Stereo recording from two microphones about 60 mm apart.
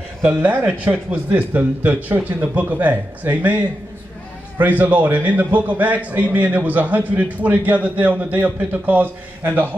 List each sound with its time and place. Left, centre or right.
0.4 s a man's voice: right